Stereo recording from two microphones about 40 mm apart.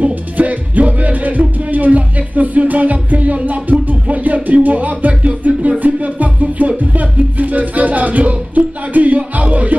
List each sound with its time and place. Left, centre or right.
0.0 s music: right